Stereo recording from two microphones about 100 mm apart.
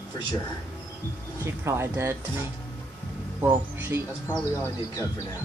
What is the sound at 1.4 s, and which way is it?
Speech, 25° right (ahead or behind).